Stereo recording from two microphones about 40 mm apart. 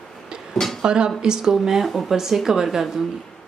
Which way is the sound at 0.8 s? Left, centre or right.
Right.